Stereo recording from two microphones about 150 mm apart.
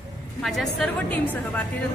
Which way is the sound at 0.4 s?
Centre (ahead or behind).